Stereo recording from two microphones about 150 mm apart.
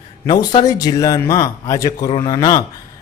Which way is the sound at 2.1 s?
30° left (ahead or behind).